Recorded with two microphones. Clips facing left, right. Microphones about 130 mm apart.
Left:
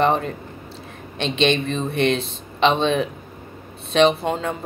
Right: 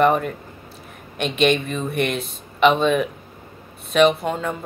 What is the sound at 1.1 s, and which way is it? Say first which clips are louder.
Speech: right 1 dB; 25° left (ahead or behind).